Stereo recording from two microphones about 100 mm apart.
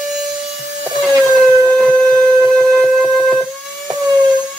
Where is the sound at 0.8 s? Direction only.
15° right (ahead or behind).